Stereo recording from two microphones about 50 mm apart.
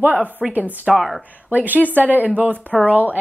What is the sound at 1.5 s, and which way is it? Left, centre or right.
Speech, right.